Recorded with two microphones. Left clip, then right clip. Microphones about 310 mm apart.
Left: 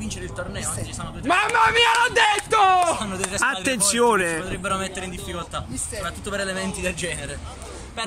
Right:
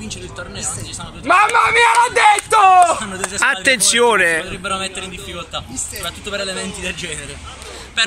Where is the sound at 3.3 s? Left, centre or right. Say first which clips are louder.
Right 8 dB; centre.